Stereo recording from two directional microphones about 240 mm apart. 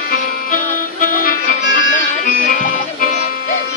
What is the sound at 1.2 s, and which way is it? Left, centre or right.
Music, left.